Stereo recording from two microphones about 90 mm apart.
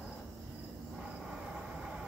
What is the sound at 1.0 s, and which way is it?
Vehicle, 10° right (ahead or behind).